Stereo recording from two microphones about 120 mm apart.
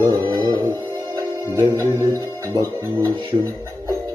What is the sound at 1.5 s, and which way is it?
Music, 30° right (ahead or behind).